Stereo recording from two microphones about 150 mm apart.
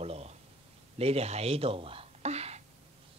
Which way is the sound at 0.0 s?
45° right (ahead or behind).